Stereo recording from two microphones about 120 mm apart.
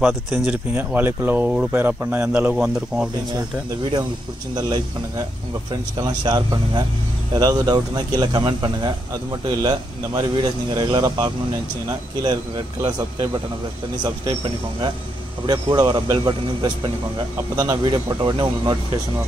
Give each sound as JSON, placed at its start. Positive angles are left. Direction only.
{"t": 0.0, "sound": "speech", "side_deg": -10}
{"t": 4.6, "sound": "a man's voice", "side_deg": -35}
{"t": 15.4, "sound": "a man's voice", "side_deg": -35}